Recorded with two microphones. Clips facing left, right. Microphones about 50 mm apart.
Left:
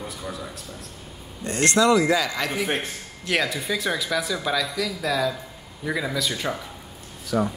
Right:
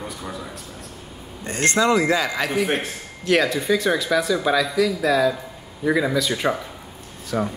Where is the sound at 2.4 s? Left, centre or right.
Centre.